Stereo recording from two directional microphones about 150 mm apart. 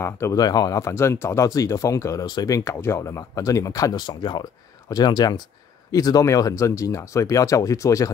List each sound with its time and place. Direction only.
0.0 s speech: 20° left (ahead or behind)